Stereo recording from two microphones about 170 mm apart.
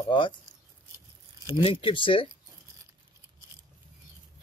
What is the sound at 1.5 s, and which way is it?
Speech, 30° left (ahead or behind).